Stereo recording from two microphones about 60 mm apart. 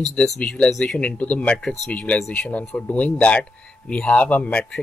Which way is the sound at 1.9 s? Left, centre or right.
Left.